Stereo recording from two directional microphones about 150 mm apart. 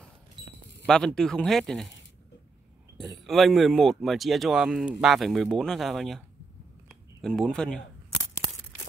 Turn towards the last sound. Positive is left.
turn(degrees=5)  # may be behind; listen again after turning